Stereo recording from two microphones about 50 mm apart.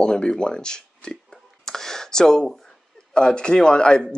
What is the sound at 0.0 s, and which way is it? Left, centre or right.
Speech, centre.